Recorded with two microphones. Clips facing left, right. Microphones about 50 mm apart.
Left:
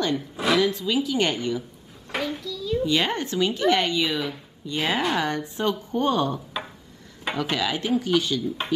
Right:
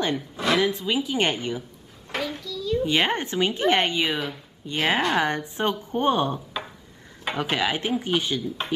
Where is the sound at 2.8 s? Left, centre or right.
Right.